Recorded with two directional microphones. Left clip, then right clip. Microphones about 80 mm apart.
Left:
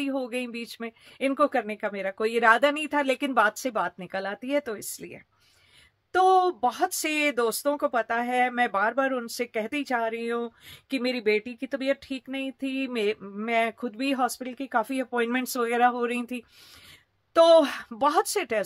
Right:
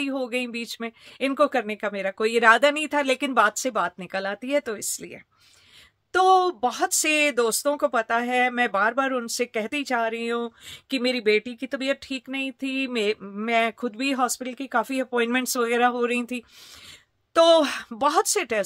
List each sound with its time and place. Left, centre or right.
0.0 s speech: right